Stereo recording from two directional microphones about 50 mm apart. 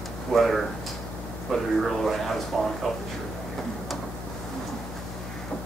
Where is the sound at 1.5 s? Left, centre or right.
Centre.